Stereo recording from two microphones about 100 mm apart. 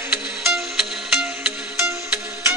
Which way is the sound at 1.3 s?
15° right (ahead or behind).